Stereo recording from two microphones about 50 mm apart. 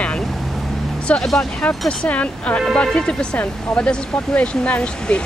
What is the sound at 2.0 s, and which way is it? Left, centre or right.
Speech, left.